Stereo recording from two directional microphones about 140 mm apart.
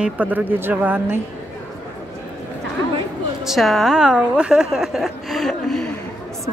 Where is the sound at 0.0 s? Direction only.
10° right (ahead or behind).